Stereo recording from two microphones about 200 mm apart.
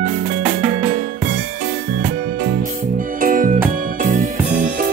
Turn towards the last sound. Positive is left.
turn(degrees=-40)  # may be behind; listen again after turning